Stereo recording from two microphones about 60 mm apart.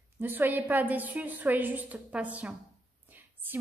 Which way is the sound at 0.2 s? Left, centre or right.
Right.